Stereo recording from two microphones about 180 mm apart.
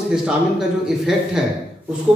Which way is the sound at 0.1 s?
5° right (ahead or behind).